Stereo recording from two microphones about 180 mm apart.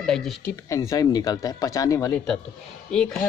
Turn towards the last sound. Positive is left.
turn(degrees=5)  # may be behind; listen again after turning